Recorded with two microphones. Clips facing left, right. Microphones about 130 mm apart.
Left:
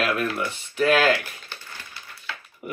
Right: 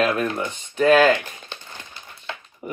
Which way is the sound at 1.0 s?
20° right (ahead or behind).